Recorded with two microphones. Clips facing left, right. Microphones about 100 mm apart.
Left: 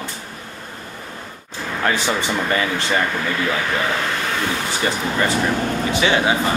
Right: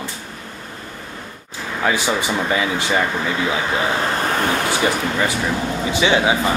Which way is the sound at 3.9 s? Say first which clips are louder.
Right 3 dB; 35° right (ahead or behind).